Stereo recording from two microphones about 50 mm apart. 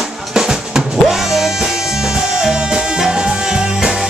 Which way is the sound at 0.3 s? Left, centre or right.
Centre.